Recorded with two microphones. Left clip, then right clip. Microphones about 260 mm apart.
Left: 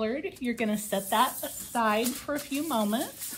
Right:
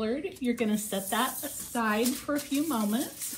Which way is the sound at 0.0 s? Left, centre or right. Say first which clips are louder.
Even; left.